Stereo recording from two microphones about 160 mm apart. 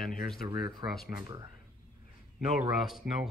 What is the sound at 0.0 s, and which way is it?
Speech, 5° left (ahead or behind).